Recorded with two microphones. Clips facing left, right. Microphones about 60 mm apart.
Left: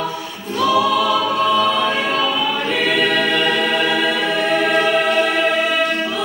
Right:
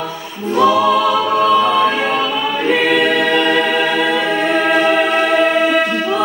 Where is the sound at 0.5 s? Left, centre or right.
Right.